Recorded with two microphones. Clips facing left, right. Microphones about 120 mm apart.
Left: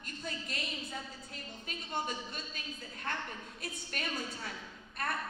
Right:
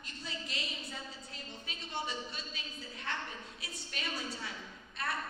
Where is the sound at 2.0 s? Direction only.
50° left (ahead or behind).